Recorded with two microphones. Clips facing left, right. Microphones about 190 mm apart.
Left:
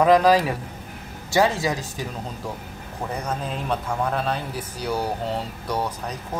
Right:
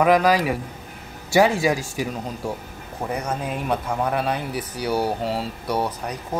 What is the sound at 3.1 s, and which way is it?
Speech, 10° right (ahead or behind).